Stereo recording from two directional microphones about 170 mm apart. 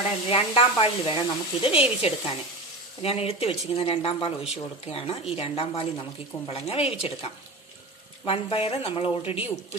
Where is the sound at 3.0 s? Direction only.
35° left (ahead or behind).